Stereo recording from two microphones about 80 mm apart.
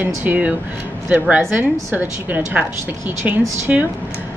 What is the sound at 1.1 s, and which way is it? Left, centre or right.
A woman's voice, centre.